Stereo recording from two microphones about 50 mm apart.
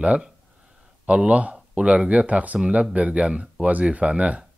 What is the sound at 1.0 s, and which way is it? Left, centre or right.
Speech, right.